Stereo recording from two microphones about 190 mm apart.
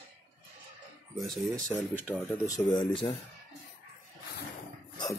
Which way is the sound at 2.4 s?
20° left (ahead or behind).